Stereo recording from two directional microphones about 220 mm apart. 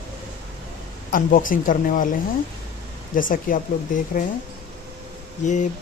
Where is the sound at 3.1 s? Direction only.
40° left (ahead or behind).